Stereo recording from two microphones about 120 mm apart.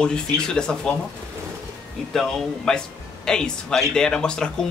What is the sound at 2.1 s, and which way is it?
Speech, 5° left (ahead or behind).